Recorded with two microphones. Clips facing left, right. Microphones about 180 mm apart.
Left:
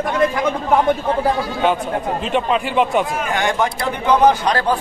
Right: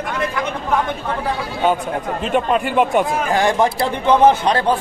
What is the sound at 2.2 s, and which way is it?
Speech, centre (ahead or behind).